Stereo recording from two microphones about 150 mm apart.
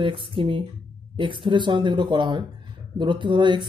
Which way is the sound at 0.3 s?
35° right (ahead or behind).